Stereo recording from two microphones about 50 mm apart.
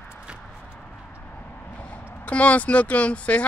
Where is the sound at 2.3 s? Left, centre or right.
Left.